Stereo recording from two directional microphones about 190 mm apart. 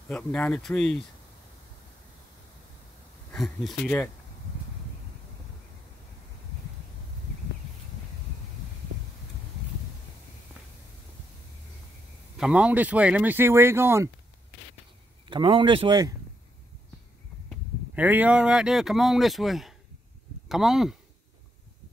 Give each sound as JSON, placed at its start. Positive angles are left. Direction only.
{"t": 0.1, "sound": "speech", "side_deg": 5}
{"t": 3.3, "sound": "speech", "side_deg": 0}
{"t": 12.4, "sound": "speech", "side_deg": -5}
{"t": 15.2, "sound": "speech", "side_deg": -25}
{"t": 17.9, "sound": "speech", "side_deg": -10}